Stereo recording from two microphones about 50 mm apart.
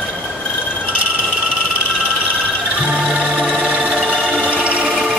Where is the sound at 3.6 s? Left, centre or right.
Right.